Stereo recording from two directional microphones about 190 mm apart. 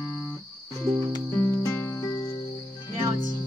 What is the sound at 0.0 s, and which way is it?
Music, 10° left (ahead or behind).